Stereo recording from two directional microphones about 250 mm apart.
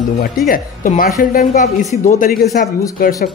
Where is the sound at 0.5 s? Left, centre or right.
Left.